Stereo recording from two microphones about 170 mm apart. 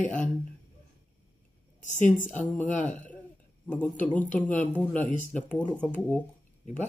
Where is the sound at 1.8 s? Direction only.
45° left (ahead or behind).